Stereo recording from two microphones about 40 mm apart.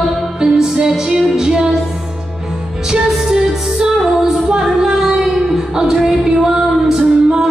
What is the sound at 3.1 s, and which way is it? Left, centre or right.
Music, centre.